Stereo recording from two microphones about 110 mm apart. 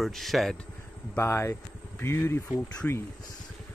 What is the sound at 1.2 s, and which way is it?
Speech, 25° left (ahead or behind).